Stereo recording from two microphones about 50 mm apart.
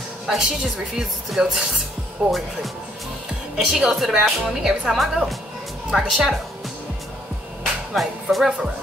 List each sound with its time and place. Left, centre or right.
0.3 s speech: centre
2.2 s speech: right
3.5 s speech: centre
4.9 s a woman's voice: centre
7.9 s speech: centre